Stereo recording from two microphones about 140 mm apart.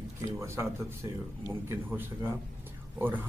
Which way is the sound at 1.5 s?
15° right (ahead or behind).